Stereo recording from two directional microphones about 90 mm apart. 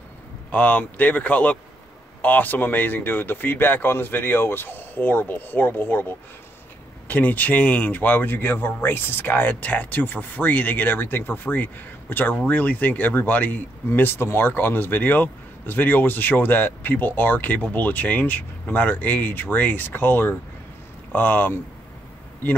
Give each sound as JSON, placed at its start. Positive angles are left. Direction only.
{"t": 0.5, "sound": "speech", "side_deg": 15}
{"t": 7.1, "sound": "speech", "side_deg": 20}